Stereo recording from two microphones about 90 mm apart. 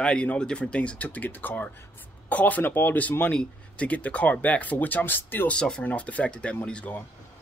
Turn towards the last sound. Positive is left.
turn(degrees=15)  # may be behind; listen again after turning